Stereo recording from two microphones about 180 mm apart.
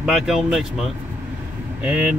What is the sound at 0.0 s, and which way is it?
Speech, 5° right (ahead or behind).